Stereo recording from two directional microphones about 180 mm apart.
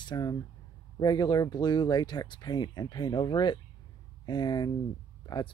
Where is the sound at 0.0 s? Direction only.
25° left (ahead or behind).